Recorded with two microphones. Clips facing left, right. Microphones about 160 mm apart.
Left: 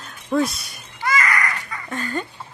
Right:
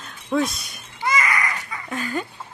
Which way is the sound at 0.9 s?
15° right (ahead or behind).